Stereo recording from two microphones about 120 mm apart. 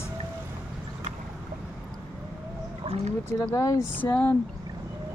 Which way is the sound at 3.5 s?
30° left (ahead or behind).